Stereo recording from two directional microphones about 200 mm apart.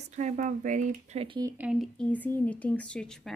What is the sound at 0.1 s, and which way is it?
Speech, 35° right (ahead or behind).